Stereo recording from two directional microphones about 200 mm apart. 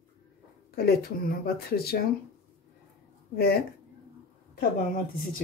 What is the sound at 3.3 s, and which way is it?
Speech, 50° left (ahead or behind).